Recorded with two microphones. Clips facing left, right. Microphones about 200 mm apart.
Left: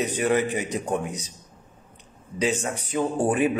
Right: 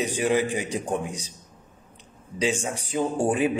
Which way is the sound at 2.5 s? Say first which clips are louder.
Left 1 dB; 10° right (ahead or behind).